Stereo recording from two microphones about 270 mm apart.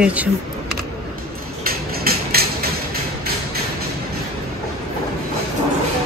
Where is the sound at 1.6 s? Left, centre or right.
Right.